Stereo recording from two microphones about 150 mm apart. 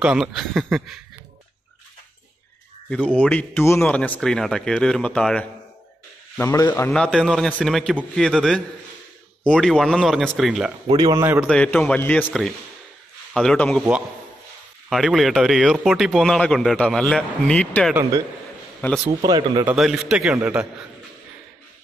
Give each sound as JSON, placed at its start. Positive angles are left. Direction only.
{"t": 0.0, "sound": "speech", "side_deg": 0}
{"t": 2.9, "sound": "a man's voice", "side_deg": 10}
{"t": 6.9, "sound": "speech", "side_deg": 5}
{"t": 10.9, "sound": "speech", "side_deg": -25}
{"t": 11.4, "sound": "a man's voice", "side_deg": 5}
{"t": 14.9, "sound": "a man's voice", "side_deg": 0}
{"t": 19.2, "sound": "speech", "side_deg": -25}
{"t": 19.6, "sound": "speech", "side_deg": -5}